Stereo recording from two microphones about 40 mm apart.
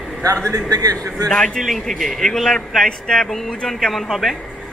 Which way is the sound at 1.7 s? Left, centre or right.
Centre.